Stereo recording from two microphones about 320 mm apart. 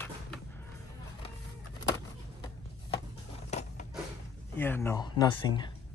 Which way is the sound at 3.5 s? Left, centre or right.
Left.